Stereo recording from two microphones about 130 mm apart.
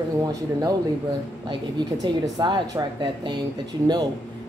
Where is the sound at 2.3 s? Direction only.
35° right (ahead or behind).